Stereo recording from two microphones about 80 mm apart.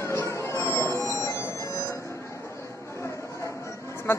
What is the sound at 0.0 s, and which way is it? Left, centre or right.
Music, left.